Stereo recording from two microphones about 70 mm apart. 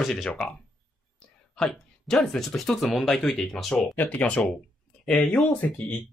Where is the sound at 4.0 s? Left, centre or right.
Left.